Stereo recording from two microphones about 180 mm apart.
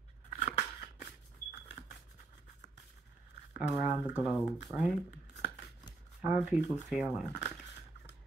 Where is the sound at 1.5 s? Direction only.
45° left (ahead or behind).